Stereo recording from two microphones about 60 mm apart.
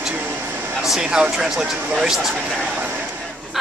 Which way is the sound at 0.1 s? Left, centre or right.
Right.